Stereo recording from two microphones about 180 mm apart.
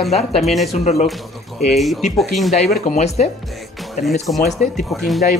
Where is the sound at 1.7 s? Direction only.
Centre (ahead or behind).